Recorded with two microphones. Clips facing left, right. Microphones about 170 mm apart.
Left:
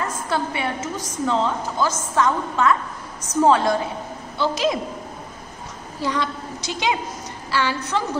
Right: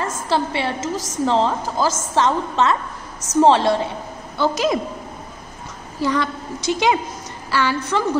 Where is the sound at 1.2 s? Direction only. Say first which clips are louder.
Right 3 dB; 30° right (ahead or behind).